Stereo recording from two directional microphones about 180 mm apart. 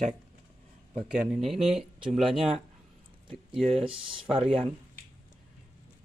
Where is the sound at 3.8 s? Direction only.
30° right (ahead or behind).